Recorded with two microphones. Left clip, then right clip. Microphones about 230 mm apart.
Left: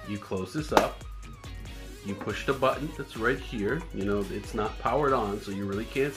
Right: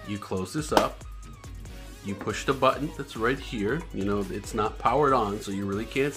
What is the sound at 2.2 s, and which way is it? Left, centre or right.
Speech, centre.